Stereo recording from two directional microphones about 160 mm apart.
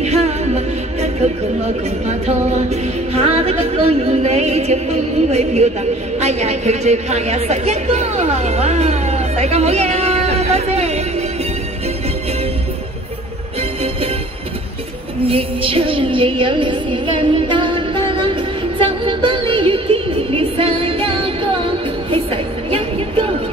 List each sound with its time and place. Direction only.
0.0 s music: 40° right (ahead or behind)
6.1 s a woman's voice: 45° right (ahead or behind)
15.2 s music: 35° right (ahead or behind)